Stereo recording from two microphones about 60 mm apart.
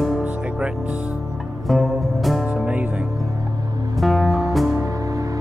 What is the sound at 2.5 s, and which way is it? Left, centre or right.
Music, right.